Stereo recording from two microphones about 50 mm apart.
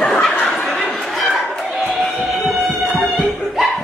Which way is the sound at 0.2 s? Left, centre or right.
Left.